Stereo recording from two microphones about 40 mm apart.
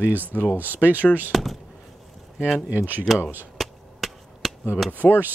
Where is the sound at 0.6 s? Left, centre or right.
Right.